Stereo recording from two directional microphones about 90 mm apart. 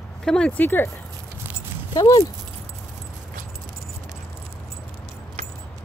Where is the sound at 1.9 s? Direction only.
50° left (ahead or behind).